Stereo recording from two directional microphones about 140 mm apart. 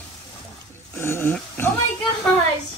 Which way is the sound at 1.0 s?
15° left (ahead or behind).